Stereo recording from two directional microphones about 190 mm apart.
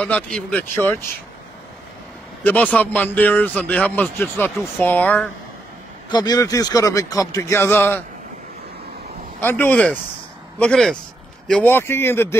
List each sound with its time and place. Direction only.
0.0 s speech: 5° left (ahead or behind)
2.4 s speech: 10° left (ahead or behind)
6.0 s speech: 20° left (ahead or behind)
9.4 s speech: 10° left (ahead or behind)